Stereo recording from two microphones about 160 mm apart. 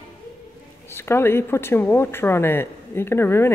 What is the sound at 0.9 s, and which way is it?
Speech, 15° left (ahead or behind).